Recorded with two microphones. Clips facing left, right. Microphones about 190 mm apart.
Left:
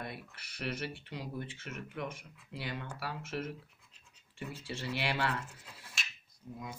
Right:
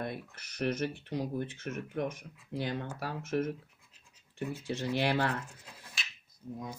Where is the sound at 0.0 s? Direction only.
45° right (ahead or behind).